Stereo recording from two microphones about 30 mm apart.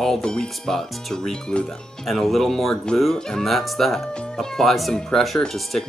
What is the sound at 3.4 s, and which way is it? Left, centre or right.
Speech, centre.